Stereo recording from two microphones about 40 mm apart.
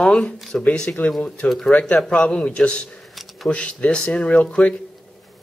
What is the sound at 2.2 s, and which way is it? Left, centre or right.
Speech, left.